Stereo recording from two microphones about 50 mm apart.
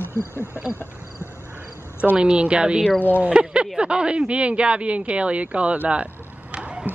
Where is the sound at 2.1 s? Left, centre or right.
Right.